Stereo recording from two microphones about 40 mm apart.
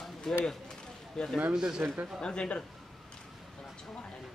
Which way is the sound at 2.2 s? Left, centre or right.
Left.